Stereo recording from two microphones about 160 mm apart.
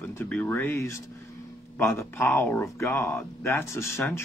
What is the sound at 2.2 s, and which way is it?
A man's voice, 5° left (ahead or behind).